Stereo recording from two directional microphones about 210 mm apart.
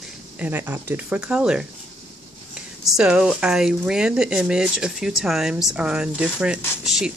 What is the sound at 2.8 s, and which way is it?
Speech, 5° right (ahead or behind).